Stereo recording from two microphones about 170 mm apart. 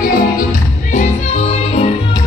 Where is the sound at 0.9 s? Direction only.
40° left (ahead or behind).